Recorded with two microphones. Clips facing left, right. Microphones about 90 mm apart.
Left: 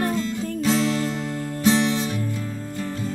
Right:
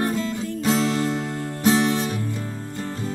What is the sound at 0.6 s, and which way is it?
Music, 40° right (ahead or behind).